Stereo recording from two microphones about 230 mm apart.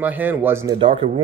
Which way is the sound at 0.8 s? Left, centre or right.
Right.